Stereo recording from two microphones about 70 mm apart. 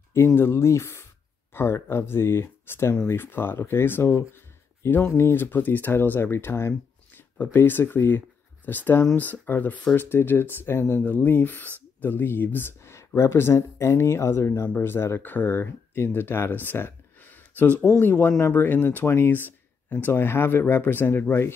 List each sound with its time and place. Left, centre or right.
0.1 s speech: left
11.1 s speech: left